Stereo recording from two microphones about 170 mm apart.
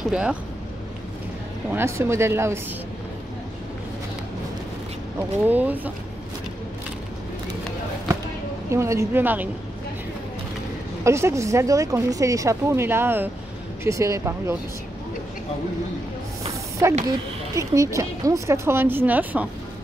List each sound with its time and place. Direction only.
0.1 s speech: 5° right (ahead or behind)
1.7 s speech: 15° right (ahead or behind)
5.5 s speech: 10° right (ahead or behind)
8.6 s speech: 15° right (ahead or behind)
11.1 s speech: 15° right (ahead or behind)
16.8 s speech: 15° right (ahead or behind)